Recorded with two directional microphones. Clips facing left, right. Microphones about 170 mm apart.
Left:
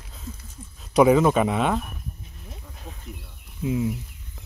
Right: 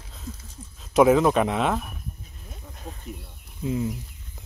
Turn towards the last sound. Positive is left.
turn(degrees=5)  # may be behind; listen again after turning